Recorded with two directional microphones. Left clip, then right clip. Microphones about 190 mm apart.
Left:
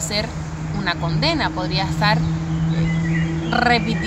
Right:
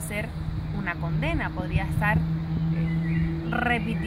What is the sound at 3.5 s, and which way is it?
Speech, centre (ahead or behind).